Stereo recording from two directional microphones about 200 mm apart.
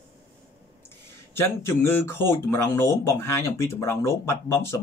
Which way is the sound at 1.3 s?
10° left (ahead or behind).